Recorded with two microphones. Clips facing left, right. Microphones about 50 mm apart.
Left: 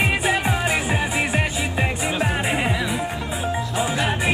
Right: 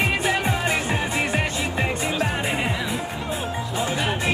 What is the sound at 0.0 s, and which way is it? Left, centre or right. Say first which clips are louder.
Music: left 1 dB; centre.